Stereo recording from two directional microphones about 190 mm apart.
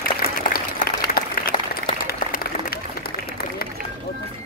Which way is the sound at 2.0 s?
50° left (ahead or behind).